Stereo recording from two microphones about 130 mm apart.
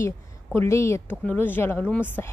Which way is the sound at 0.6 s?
20° left (ahead or behind).